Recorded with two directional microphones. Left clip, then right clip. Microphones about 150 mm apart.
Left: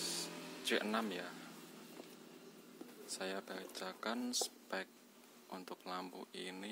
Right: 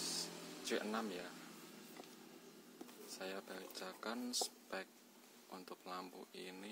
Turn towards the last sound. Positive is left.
turn(degrees=15)  # may be behind; listen again after turning